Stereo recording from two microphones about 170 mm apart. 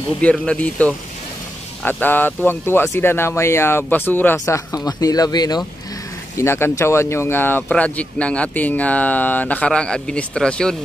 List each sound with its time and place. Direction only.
0.2 s speech: 5° left (ahead or behind)